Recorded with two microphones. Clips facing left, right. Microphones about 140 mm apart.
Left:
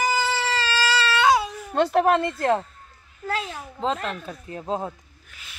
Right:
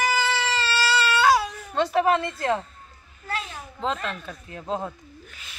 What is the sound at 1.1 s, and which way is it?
Baby cry, 20° left (ahead or behind).